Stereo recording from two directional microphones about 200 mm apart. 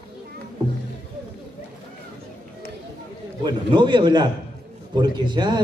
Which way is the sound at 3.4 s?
25° right (ahead or behind).